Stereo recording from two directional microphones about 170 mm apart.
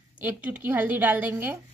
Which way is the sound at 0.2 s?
10° right (ahead or behind).